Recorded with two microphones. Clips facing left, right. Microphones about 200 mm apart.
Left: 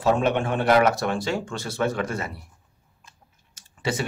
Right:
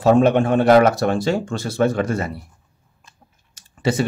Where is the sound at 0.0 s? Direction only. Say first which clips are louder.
Right 7 dB; 40° right (ahead or behind).